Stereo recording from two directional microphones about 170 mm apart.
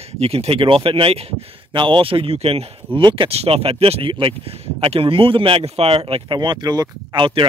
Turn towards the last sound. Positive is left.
turn(degrees=-30)  # may be behind; listen again after turning